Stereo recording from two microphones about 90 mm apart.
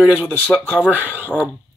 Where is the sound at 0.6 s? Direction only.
15° right (ahead or behind).